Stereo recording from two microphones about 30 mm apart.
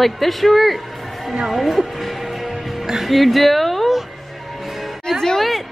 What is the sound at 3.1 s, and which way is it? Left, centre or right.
Speech, centre.